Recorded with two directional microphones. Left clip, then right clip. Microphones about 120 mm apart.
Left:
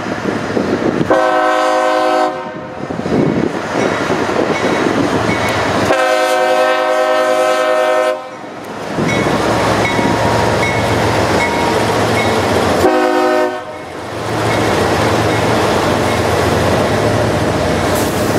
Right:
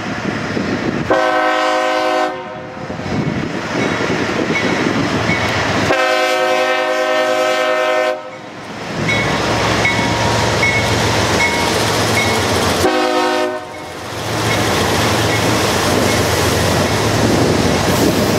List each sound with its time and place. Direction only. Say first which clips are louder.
0.7 s train: left 3 dB; centre (ahead or behind)
3.7 s train: left 1 dB; centre (ahead or behind)
9.5 s train: left 1 dB; 10° right (ahead or behind)
12.2 s train: left 2 dB; 20° right (ahead or behind)